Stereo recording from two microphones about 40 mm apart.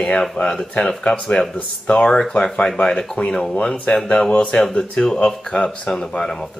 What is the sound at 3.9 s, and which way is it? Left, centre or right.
Speech, left.